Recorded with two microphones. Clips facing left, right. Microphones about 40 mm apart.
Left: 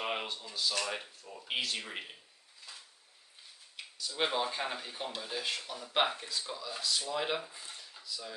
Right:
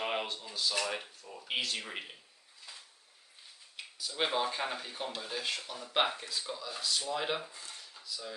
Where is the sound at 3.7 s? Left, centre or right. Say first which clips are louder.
Even; centre.